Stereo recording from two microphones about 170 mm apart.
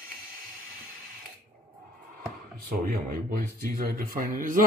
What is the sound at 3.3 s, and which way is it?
Speech, 60° right (ahead or behind).